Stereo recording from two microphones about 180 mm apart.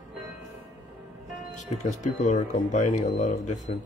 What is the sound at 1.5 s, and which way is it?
Speech, 40° left (ahead or behind).